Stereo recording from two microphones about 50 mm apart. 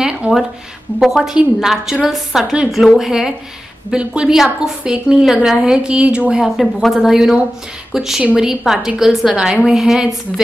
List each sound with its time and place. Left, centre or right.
0.0 s a sound: centre
1.0 s a woman's voice: centre
3.0 s a woman's voice: centre
3.9 s a woman's voice: centre
6.4 s a woman's voice: centre